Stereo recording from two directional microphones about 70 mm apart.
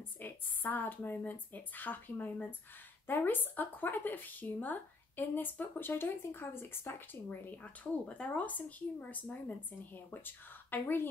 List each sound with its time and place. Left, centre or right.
0.2 s a woman's voice: left
7.2 s a woman's voice: left